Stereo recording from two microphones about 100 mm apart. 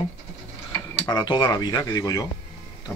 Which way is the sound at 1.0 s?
50° left (ahead or behind).